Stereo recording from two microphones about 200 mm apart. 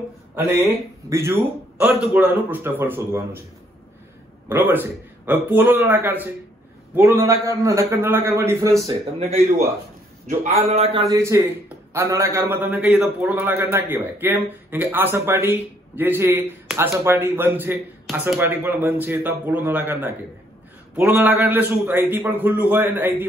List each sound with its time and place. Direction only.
0.4 s a man's voice: 10° right (ahead or behind)
4.5 s a man's voice: 10° right (ahead or behind)
9.2 s speech: 30° right (ahead or behind)
10.7 s a man's voice: 30° right (ahead or behind)
11.1 s a man's voice: 15° right (ahead or behind)